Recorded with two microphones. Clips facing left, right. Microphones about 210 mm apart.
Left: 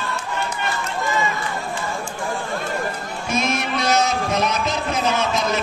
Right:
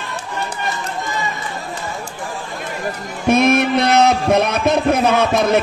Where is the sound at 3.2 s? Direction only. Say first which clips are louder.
Right 10 dB; 60° right (ahead or behind).